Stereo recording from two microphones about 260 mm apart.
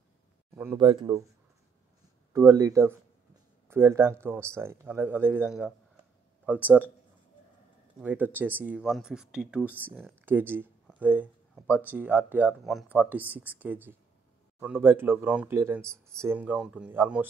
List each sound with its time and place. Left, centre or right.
0.6 s speech: centre
2.3 s speech: centre
8.0 s speech: centre